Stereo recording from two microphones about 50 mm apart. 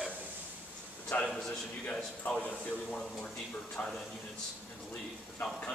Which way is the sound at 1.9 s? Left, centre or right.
Centre.